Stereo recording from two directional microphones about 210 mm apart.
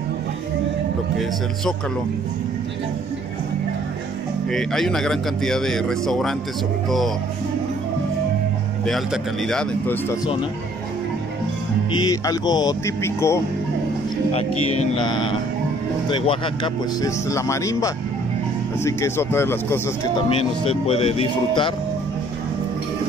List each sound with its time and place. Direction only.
4.5 s speech: centre (ahead or behind)
8.8 s speech: centre (ahead or behind)
11.9 s speech: 20° left (ahead or behind)
15.0 s speech: 20° left (ahead or behind)
20.2 s speech: 25° left (ahead or behind)